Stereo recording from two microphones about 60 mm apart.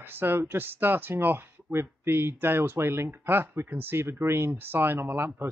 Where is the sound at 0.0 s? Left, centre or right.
Right.